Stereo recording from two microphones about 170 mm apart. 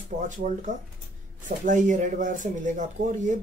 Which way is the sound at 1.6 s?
50° right (ahead or behind).